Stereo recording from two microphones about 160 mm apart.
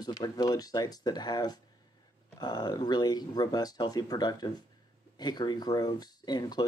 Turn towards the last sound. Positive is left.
turn(degrees=25)  # may be behind; listen again after turning